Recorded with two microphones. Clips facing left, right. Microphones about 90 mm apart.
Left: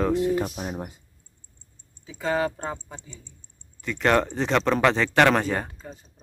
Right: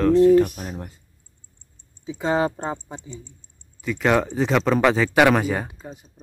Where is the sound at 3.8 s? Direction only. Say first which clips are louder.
Right 1 dB; 5° right (ahead or behind).